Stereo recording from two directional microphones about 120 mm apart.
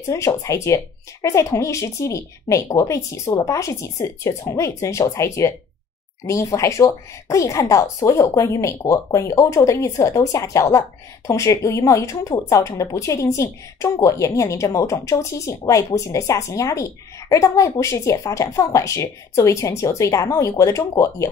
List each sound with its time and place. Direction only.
0.1 s speech: 25° left (ahead or behind)